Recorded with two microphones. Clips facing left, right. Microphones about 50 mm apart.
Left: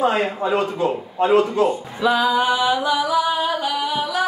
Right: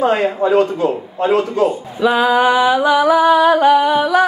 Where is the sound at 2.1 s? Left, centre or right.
Right.